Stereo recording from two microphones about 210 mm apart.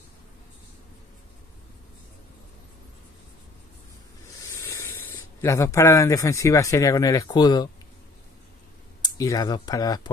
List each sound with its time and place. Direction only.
4.4 s speech: 15° left (ahead or behind)
9.0 s speech: 15° left (ahead or behind)